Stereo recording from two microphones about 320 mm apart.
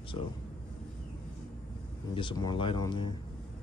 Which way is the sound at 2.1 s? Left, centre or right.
Centre.